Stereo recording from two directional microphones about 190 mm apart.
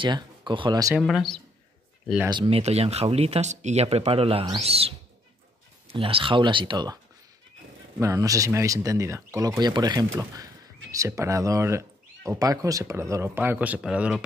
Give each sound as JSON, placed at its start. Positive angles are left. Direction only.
{"t": 0.0, "sound": "speech", "side_deg": -25}
{"t": 0.9, "sound": "speech", "side_deg": 0}
{"t": 2.2, "sound": "speech", "side_deg": -25}
{"t": 8.0, "sound": "speech", "side_deg": -15}